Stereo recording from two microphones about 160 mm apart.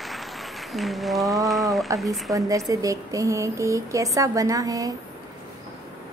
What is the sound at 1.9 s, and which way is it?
A woman's voice, 20° right (ahead or behind).